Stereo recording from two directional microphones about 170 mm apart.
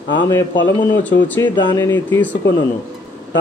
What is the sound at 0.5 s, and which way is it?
Speech, 90° left.